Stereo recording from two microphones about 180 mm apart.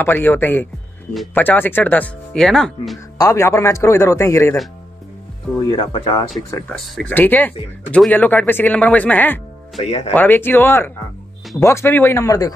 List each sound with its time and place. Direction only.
0.0 s speech: 10° left (ahead or behind)
3.2 s speech: 15° left (ahead or behind)
5.6 s speech: 25° left (ahead or behind)
6.7 s speech: 5° left (ahead or behind)
9.8 s speech: 35° left (ahead or behind)
10.1 s speech: 10° left (ahead or behind)